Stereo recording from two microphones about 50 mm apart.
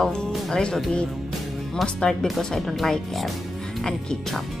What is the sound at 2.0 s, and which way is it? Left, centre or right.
Speech, centre.